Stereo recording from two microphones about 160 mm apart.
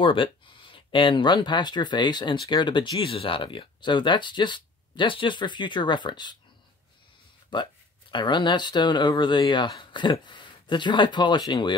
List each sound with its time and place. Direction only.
0.0 s speech: 30° left (ahead or behind)
7.5 s speech: 30° left (ahead or behind)